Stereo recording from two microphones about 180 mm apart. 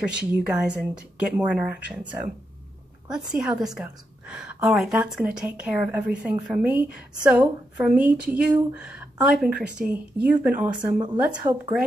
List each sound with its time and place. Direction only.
0.0 s a woman's voice: 5° right (ahead or behind)